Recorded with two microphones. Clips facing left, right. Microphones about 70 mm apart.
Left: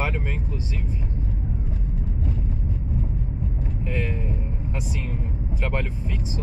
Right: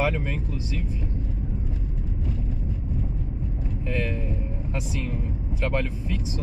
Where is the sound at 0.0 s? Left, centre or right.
Left.